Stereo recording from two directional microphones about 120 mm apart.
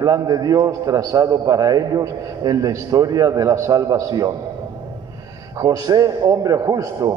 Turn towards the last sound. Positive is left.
turn(degrees=-25)  # may be behind; listen again after turning